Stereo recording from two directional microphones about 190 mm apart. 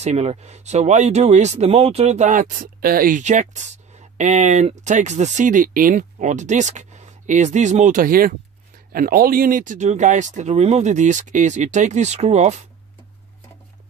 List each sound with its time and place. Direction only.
0.0 s speech: 35° right (ahead or behind)